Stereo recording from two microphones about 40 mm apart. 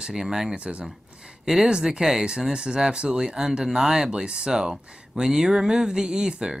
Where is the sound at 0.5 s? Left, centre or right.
Right.